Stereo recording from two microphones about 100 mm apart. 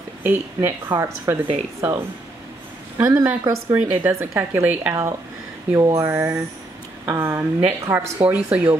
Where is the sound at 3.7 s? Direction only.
20° right (ahead or behind).